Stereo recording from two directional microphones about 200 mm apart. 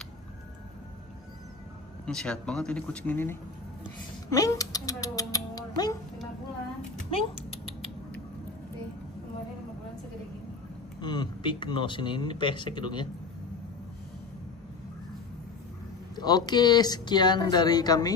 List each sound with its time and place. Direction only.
2.0 s speech: 5° left (ahead or behind)
4.3 s cat: 15° left (ahead or behind)
7.1 s a sound: 30° left (ahead or behind)
11.0 s speech: 20° left (ahead or behind)
16.2 s speech: 20° left (ahead or behind)